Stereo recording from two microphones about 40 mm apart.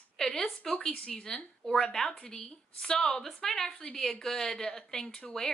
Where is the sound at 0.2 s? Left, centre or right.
Centre.